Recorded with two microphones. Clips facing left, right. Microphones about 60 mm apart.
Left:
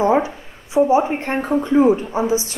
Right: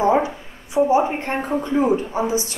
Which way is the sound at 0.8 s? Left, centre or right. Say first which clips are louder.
Left 2 dB; centre.